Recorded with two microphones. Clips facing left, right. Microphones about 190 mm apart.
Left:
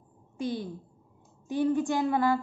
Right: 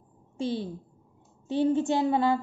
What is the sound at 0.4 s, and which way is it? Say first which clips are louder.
A woman's voice: right 2 dB; 25° right (ahead or behind).